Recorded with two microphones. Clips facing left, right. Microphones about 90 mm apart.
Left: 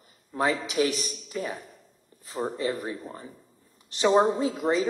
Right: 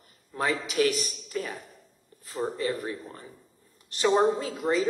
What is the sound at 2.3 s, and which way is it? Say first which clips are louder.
A woman's voice: left 1 dB; 15° left (ahead or behind).